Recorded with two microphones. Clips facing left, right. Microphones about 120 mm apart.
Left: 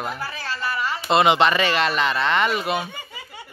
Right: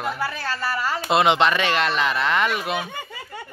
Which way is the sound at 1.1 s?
Centre (ahead or behind).